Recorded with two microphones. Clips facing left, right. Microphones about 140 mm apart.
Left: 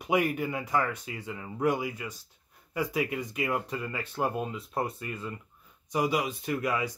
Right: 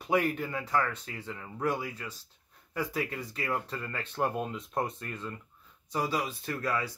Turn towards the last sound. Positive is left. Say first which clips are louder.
# left 3 dB
turn(degrees=15)  # may be behind; listen again after turning